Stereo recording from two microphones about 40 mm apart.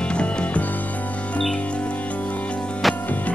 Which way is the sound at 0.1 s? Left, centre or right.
Left.